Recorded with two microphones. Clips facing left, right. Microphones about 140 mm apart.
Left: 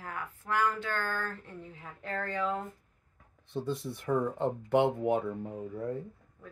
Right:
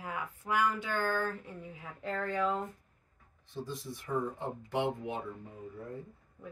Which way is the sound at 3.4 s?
60° left (ahead or behind).